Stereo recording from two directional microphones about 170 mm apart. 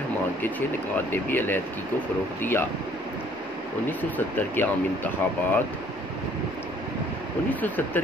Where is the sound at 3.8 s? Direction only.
10° left (ahead or behind).